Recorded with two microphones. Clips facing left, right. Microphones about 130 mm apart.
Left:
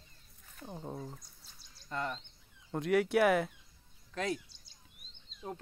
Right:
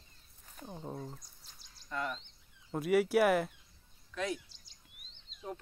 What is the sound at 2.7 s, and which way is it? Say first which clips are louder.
Speech: right 1 dB; 5° right (ahead or behind).